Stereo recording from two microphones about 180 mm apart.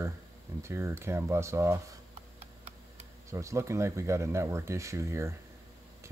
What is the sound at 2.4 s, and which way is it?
Tick-tock, 35° right (ahead or behind).